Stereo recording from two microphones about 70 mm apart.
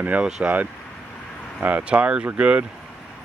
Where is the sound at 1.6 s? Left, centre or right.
Right.